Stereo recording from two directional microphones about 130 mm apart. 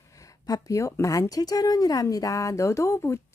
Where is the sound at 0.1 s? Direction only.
25° left (ahead or behind).